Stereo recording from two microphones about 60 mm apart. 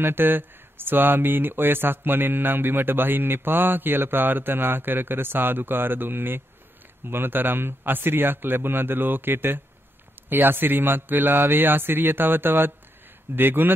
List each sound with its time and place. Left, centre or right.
0.0 s speech: right